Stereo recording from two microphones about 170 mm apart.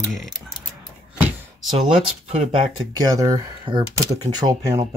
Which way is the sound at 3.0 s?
20° right (ahead or behind).